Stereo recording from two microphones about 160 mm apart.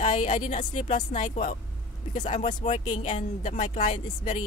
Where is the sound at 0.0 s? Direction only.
50° left (ahead or behind).